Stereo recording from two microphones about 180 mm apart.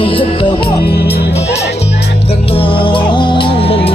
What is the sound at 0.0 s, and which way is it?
Music, 30° left (ahead or behind).